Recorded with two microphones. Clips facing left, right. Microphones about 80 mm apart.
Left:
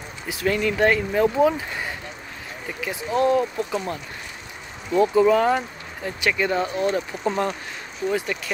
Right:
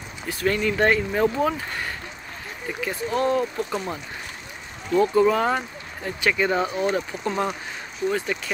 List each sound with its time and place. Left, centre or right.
0.3 s speech: centre
8.0 s speech: left